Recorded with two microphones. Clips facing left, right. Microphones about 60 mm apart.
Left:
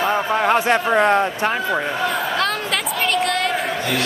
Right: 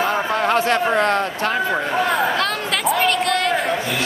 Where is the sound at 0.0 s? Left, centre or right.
Centre.